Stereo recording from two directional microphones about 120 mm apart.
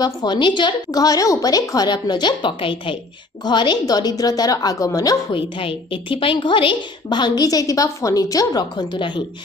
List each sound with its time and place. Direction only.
0.0 s a woman's voice: 35° left (ahead or behind)
5.3 s a woman's voice: 50° left (ahead or behind)